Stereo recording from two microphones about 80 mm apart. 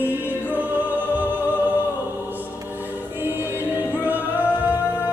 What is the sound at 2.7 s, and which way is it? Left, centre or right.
Choir, right.